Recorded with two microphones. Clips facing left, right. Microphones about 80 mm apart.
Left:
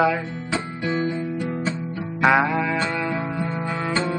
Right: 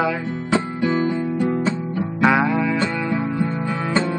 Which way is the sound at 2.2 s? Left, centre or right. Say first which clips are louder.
Right 1 dB; centre.